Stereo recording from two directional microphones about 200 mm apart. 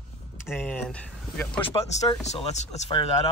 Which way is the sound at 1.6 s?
30° left (ahead or behind).